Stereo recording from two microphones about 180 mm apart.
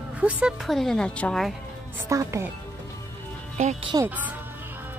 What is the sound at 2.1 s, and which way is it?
Speech, 15° right (ahead or behind).